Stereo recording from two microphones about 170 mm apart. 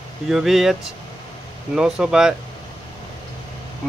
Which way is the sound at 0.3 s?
Centre (ahead or behind).